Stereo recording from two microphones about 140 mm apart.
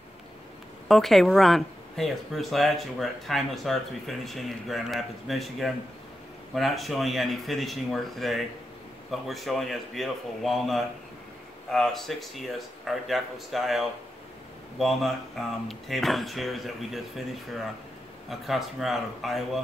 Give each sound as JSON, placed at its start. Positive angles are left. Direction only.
{"t": 0.8, "sound": "speech", "side_deg": 0}
{"t": 18.3, "sound": "speech", "side_deg": 0}